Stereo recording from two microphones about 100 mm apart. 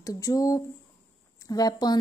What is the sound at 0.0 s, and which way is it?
Speech, 35° left (ahead or behind).